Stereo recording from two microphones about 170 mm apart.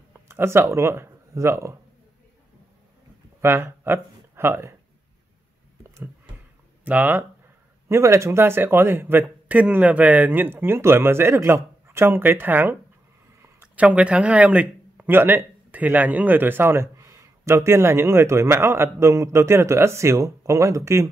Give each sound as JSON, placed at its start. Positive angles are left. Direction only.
{"t": 0.3, "sound": "speech", "side_deg": -15}
{"t": 3.3, "sound": "speech", "side_deg": -15}
{"t": 6.8, "sound": "speech", "side_deg": -10}